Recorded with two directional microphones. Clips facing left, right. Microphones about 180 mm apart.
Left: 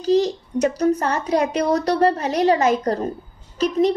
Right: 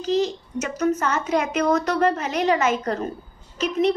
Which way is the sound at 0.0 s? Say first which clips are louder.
Left 4 dB; 35° left (ahead or behind).